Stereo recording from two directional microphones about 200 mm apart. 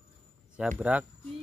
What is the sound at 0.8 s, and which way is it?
Speech, 5° right (ahead or behind).